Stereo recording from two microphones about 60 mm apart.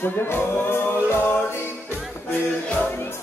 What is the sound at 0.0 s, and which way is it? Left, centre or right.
Music, left.